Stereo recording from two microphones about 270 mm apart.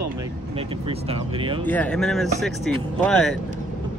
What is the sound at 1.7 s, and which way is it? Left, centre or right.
Speech, centre.